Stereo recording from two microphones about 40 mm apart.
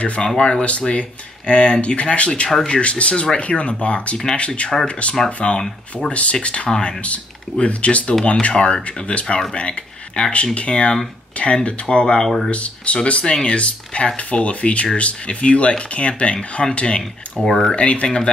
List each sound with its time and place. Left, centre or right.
0.0 s speech: left
5.4 s speech: left
6.0 s speech: left
17.5 s speech: centre
17.7 s speech: left